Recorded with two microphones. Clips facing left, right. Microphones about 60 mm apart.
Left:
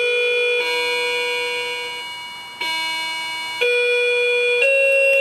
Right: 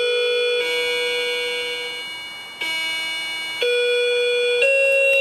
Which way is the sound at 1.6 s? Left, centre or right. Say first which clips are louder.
Left 1 dB; left.